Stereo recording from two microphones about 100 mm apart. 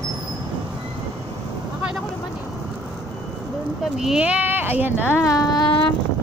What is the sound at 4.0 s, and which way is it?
Speech, 10° right (ahead or behind).